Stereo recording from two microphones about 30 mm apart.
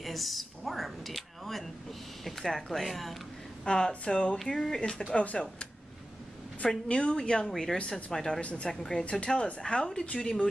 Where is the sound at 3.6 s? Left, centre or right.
Left.